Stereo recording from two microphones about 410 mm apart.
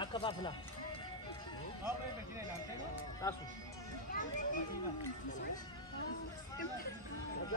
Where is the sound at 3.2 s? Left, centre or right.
Centre.